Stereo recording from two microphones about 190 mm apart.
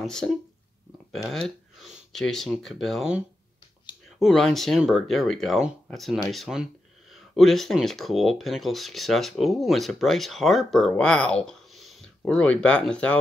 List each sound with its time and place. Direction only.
0.0 s speech: centre (ahead or behind)
1.3 s speech: centre (ahead or behind)